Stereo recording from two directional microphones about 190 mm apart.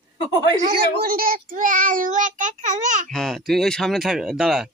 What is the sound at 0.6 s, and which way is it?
Child singing, 50° right (ahead or behind).